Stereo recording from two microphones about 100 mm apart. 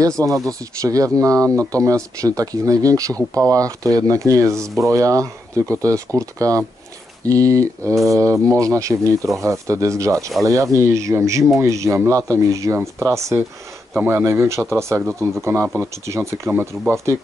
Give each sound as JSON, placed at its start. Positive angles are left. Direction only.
{"t": 0.5, "sound": "speech", "side_deg": -35}